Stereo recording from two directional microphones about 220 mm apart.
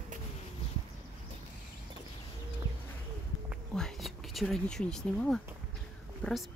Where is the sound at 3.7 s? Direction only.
Centre (ahead or behind).